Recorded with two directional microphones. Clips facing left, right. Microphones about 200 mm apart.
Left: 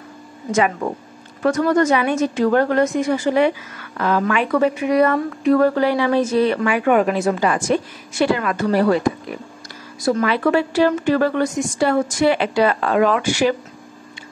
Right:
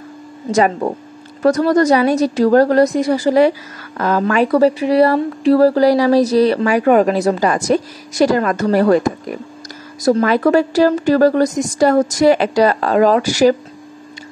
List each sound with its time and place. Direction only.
0.5 s speech: 35° right (ahead or behind)